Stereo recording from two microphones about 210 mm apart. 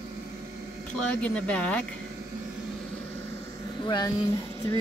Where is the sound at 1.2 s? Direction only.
5° left (ahead or behind).